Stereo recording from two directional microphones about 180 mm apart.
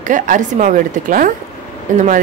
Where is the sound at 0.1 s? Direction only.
45° right (ahead or behind).